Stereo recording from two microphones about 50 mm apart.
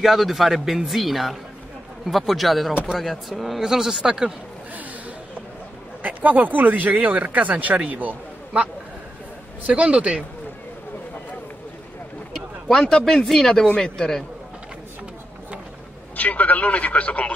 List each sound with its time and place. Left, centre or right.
0.0 s speech: centre
6.0 s speech: right
9.6 s a man's voice: right
12.6 s speech: centre
16.2 s a man's voice: left